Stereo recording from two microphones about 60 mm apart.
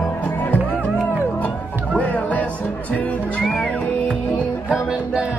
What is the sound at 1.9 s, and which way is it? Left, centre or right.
Music, left.